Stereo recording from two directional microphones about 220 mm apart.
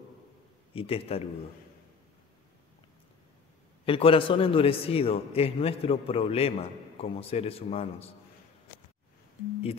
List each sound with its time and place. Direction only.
0.7 s a man's voice: 25° left (ahead or behind)
3.8 s a man's voice: 25° left (ahead or behind)